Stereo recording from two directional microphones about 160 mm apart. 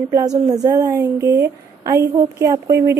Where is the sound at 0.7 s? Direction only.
20° right (ahead or behind).